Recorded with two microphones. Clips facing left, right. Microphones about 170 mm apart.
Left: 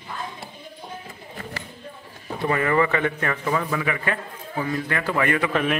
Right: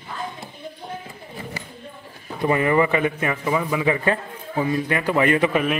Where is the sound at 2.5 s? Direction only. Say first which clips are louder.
Right 3 dB; 20° right (ahead or behind).